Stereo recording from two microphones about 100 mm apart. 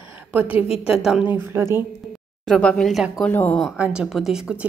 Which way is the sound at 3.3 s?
20° left (ahead or behind).